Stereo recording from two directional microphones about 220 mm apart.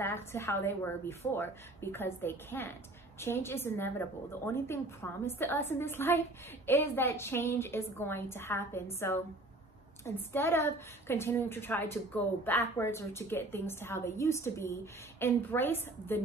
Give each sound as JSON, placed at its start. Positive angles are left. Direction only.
{"t": 0.0, "sound": "a woman's voice", "side_deg": 10}
{"t": 10.0, "sound": "a woman's voice", "side_deg": 10}